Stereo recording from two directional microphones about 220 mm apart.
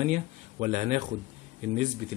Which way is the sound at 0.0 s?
30° right (ahead or behind).